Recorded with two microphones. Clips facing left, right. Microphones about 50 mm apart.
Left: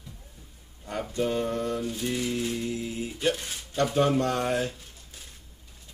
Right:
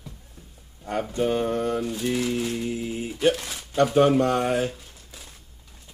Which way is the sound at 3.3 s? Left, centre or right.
Right.